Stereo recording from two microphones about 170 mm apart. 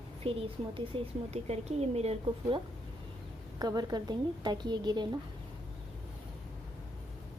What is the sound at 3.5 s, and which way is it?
A woman's voice, 25° right (ahead or behind).